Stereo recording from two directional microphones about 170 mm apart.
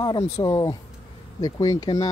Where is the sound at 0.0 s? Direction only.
25° left (ahead or behind).